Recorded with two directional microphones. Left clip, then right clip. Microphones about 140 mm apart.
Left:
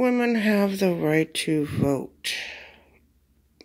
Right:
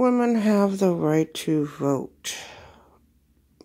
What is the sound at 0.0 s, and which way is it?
A woman's voice, 20° right (ahead or behind).